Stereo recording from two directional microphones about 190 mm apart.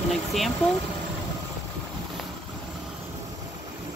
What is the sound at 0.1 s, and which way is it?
Vehicle, centre (ahead or behind).